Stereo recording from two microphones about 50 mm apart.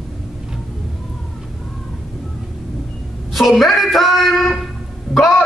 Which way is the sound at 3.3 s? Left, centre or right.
Centre.